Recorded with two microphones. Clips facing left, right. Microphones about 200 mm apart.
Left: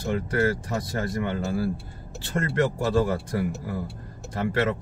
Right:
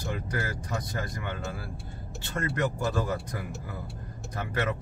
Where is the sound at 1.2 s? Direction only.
35° left (ahead or behind).